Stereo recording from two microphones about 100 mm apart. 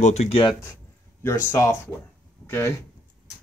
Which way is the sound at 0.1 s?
80° left.